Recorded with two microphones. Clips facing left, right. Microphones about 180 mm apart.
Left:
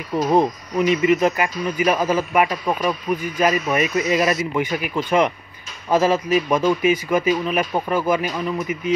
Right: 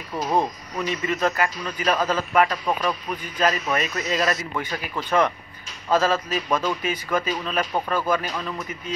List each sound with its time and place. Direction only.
0.3 s a man's voice: 15° left (ahead or behind)